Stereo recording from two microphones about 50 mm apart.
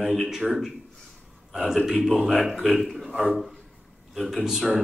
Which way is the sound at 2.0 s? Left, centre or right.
Centre.